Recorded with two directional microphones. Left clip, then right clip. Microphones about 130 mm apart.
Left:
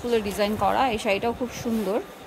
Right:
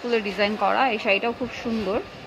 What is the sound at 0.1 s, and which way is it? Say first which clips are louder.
A woman's voice: right 1 dB; 30° left (ahead or behind).